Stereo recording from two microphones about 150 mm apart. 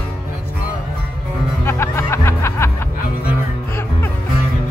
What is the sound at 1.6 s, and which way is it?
Music, 20° left (ahead or behind).